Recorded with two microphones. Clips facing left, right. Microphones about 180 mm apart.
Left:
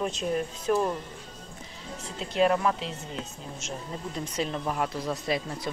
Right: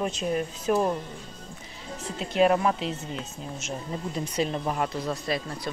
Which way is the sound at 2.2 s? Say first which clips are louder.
Right 2 dB; 5° right (ahead or behind).